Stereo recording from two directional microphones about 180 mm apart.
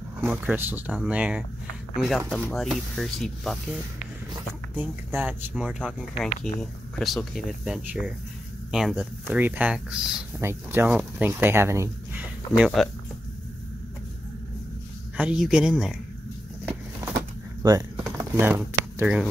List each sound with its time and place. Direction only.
0.2 s speech: 10° right (ahead or behind)
4.7 s speech: 10° right (ahead or behind)
15.1 s speech: 5° right (ahead or behind)
17.6 s typing: 15° right (ahead or behind)
18.1 s a sound: 20° right (ahead or behind)